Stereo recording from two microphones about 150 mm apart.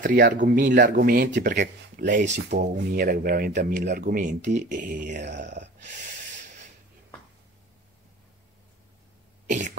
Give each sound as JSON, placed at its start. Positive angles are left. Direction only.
{"t": 0.0, "sound": "speech", "side_deg": -65}
{"t": 3.8, "sound": "speech", "side_deg": -60}